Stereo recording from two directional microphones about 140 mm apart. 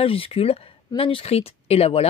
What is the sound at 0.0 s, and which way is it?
Speech, 40° left (ahead or behind).